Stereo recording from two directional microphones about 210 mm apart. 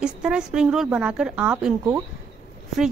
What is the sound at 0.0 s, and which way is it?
Speech, 5° right (ahead or behind).